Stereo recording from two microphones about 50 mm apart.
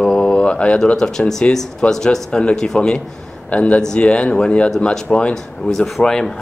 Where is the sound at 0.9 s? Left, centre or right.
Centre.